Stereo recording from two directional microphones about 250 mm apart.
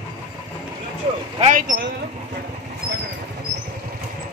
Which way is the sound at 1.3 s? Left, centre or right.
Right.